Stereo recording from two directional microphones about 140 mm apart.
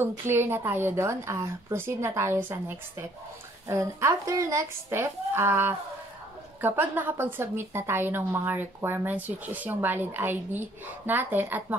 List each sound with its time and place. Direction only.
0.0 s a woman's voice: 15° right (ahead or behind)